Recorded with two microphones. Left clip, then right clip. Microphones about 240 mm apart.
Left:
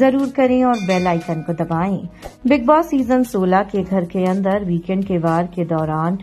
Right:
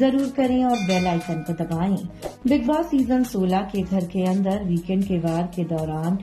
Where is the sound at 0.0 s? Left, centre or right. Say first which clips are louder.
Left 6 dB; centre.